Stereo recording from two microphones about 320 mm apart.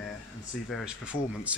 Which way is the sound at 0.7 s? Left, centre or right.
Centre.